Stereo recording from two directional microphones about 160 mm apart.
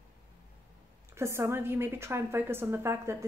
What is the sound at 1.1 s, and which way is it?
Speech, 15° right (ahead or behind).